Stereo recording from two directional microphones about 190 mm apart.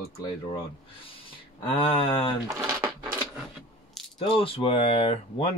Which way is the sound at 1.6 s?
30° left (ahead or behind).